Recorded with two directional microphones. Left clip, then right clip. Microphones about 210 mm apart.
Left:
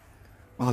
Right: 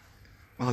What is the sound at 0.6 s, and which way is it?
Speech, 15° left (ahead or behind).